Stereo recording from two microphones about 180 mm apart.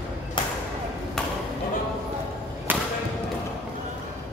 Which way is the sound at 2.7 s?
10° right (ahead or behind).